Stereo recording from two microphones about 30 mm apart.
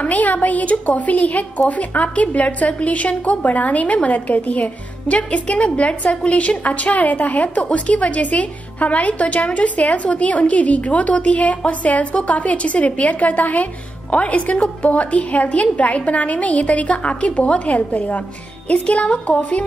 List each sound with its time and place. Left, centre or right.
0.0 s a woman's voice: left
14.1 s a woman's voice: left
18.7 s speech: left